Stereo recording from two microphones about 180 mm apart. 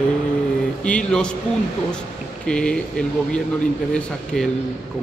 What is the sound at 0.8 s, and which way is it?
Speech, 5° left (ahead or behind).